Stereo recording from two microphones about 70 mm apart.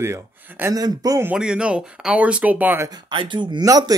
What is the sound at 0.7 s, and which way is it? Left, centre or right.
Speech, right.